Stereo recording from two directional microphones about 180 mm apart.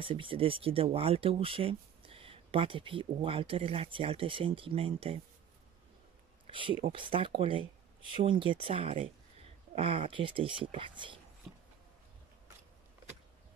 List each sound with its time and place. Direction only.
0.0 s speech: 30° right (ahead or behind)
6.4 s speech: 30° right (ahead or behind)